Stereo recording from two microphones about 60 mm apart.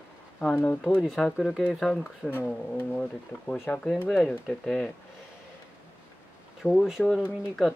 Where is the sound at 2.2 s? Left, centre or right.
Left.